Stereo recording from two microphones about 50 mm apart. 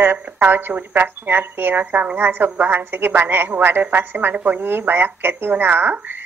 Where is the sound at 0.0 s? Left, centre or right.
Right.